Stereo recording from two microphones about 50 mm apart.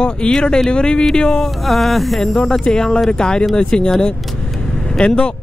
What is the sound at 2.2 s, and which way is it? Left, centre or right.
Speech, centre.